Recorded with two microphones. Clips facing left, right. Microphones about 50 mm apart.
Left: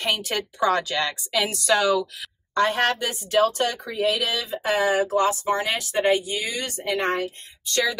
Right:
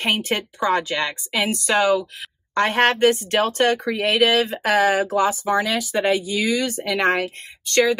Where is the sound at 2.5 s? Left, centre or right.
Right.